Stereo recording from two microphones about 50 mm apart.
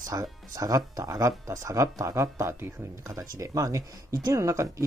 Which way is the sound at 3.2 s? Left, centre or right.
Right.